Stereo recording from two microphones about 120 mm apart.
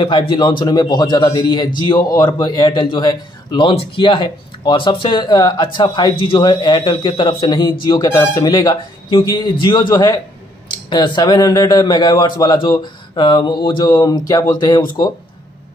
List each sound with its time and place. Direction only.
0.0 s speech: 45° left (ahead or behind)
3.6 s speech: 50° left (ahead or behind)